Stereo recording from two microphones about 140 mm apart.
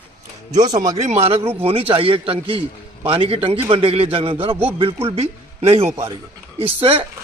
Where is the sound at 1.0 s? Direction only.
50° right (ahead or behind).